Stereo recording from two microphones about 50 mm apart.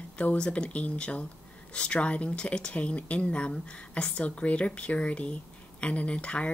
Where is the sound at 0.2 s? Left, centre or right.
Left.